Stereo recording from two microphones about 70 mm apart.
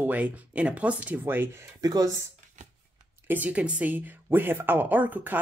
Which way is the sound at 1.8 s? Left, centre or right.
Right.